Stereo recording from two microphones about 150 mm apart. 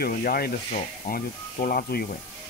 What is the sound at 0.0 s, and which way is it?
Speech, 85° left.